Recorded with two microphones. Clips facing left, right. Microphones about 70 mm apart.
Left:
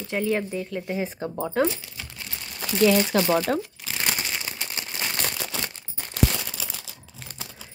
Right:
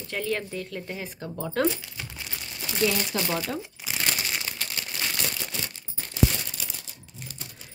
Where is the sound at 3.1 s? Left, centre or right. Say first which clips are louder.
Left 7 dB; left.